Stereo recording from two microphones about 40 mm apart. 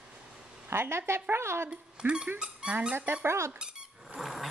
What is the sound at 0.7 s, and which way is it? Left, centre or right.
A woman's voice, right.